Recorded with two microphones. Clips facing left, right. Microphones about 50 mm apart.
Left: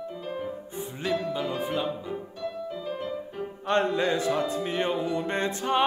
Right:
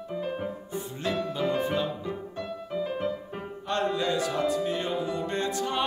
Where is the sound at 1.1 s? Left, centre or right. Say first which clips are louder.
Right 1 dB; centre.